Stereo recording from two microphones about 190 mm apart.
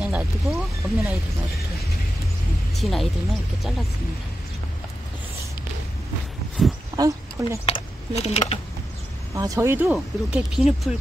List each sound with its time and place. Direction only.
0.0 s speech: 5° right (ahead or behind)
2.7 s speech: centre (ahead or behind)
6.6 s a sound: 5° right (ahead or behind)
7.0 s speech: 15° right (ahead or behind)
7.6 s a sound: 35° left (ahead or behind)
9.3 s speech: 15° right (ahead or behind)